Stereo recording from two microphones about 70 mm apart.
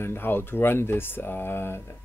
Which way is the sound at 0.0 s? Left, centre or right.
Left.